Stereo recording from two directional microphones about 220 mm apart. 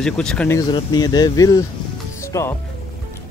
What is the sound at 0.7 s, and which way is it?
Speech, 20° left (ahead or behind).